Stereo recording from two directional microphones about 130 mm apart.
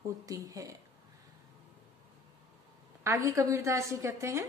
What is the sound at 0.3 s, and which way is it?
Speech, 25° right (ahead or behind).